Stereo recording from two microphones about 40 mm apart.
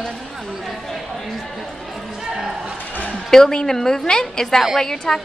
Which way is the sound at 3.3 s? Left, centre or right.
Centre.